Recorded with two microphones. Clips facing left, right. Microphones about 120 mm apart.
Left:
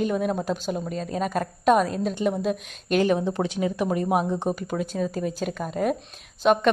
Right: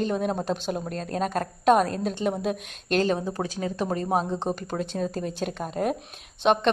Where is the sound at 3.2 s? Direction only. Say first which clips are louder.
Left 4 dB; 20° left (ahead or behind); by 5.9 s centre (ahead or behind).